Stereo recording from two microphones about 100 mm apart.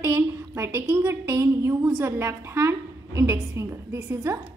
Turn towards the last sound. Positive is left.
turn(degrees=-30)  # may be behind; listen again after turning